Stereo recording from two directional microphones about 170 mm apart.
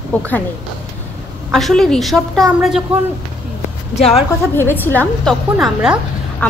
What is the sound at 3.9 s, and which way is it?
Speech, 35° left (ahead or behind).